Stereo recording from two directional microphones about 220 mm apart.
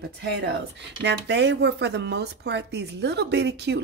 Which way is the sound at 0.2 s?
50° right (ahead or behind).